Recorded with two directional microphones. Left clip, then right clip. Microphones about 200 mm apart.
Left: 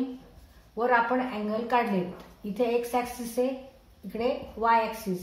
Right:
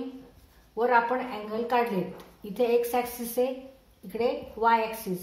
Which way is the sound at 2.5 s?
40° right (ahead or behind).